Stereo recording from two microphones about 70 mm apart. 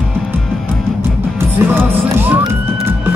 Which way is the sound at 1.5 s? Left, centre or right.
Right.